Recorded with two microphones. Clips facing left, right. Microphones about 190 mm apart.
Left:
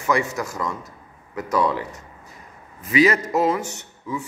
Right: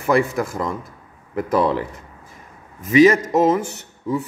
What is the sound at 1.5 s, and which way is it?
Speech, 30° right (ahead or behind).